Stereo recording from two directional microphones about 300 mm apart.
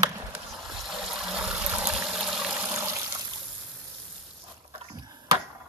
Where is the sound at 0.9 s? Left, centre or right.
Centre.